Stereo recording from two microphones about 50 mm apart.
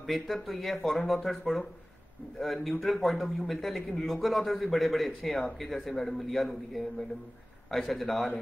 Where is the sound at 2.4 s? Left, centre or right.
Centre.